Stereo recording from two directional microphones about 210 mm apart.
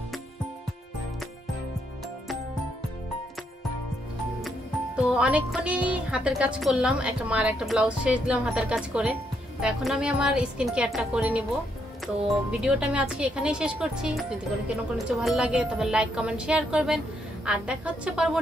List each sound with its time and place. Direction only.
4.4 s speech: centre (ahead or behind)
12.4 s speech: 5° right (ahead or behind)